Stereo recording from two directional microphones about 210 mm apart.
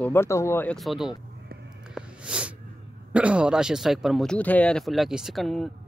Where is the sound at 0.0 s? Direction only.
10° left (ahead or behind).